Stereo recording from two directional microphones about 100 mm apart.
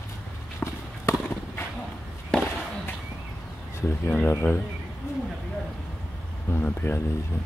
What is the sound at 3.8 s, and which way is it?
Speech, 20° left (ahead or behind).